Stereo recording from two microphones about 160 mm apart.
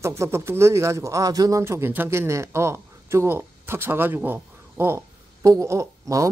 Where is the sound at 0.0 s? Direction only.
15° right (ahead or behind).